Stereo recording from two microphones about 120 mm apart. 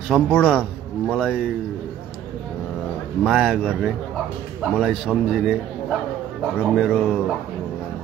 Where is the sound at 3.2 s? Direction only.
Centre (ahead or behind).